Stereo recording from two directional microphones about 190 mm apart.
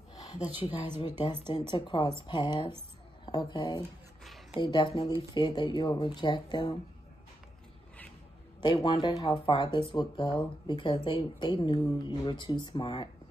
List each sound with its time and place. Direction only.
0.6 s speech: 25° left (ahead or behind)
8.6 s speech: 20° left (ahead or behind)